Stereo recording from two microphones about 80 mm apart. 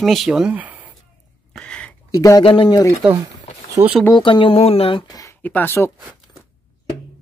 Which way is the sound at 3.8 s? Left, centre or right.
Right.